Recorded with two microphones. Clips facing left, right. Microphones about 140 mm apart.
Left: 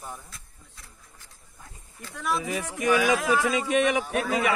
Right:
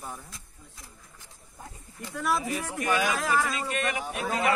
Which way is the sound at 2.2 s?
Centre (ahead or behind).